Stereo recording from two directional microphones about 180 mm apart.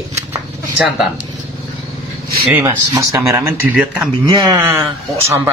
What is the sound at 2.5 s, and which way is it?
A man's voice, 10° right (ahead or behind).